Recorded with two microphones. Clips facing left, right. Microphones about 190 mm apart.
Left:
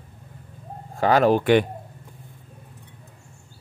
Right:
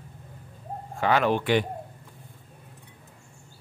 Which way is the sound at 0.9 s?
40° left (ahead or behind).